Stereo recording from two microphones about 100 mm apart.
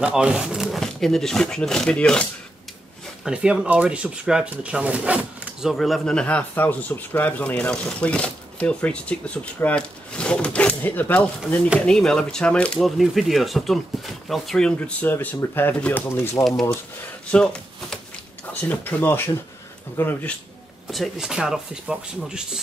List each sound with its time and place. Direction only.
0.0 s speech: 10° right (ahead or behind); by 2.2 s 10° left (ahead or behind)
3.3 s speech: 10° right (ahead or behind)
5.7 s speech: centre (ahead or behind); by 11.2 s 15° left (ahead or behind)
11.8 s speech: 5° left (ahead or behind)
12.8 s speech: centre (ahead or behind)
14.8 s speech: 15° left (ahead or behind)
17.3 s speech: 10° left (ahead or behind)
20.9 s speech: centre (ahead or behind)